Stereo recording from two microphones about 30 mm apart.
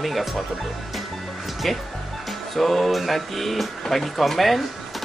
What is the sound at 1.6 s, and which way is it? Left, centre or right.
Speech, centre.